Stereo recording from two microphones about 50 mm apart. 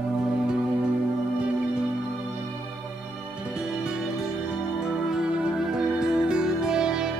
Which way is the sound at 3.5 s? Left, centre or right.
Centre.